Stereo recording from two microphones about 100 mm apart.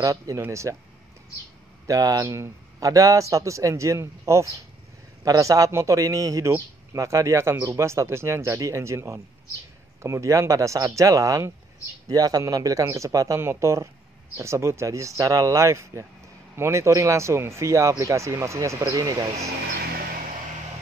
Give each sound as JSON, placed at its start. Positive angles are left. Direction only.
{"t": 0.0, "sound": "speech", "side_deg": -35}
{"t": 1.9, "sound": "speech", "side_deg": -35}